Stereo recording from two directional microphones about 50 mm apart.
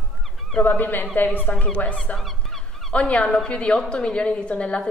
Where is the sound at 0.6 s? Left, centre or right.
Left.